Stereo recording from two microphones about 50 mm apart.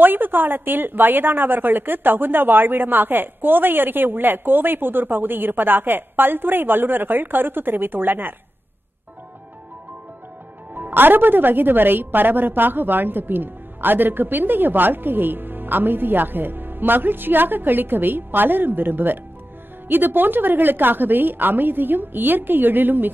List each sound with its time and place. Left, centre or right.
0.0 s a woman's voice: right
10.7 s a woman's voice: right